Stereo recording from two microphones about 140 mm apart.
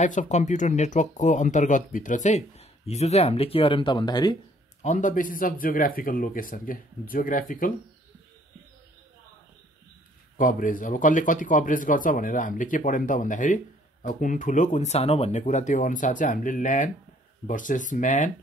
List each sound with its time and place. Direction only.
0.0 s speech: 60° left (ahead or behind); by 4.4 s 30° left (ahead or behind)
4.8 s speech: 65° left (ahead or behind)
10.3 s speech: 75° left (ahead or behind)